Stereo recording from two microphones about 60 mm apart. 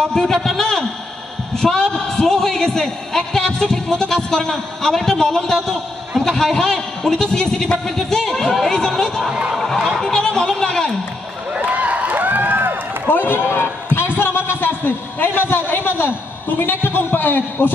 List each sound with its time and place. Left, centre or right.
0.1 s a sound: centre
1.6 s a man's voice: centre
9.3 s a sound: centre
9.6 s a man's voice: centre
11.5 s run: right
13.1 s a man's voice: left